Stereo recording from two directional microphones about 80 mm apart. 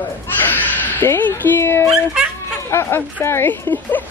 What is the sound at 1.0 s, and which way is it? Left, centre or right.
Speech, left.